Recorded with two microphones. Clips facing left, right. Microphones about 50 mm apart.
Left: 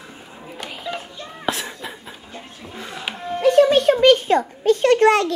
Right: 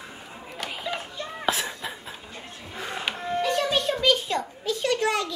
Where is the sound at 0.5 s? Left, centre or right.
Centre.